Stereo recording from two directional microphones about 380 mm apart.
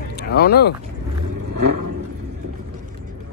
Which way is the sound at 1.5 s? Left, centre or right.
Right.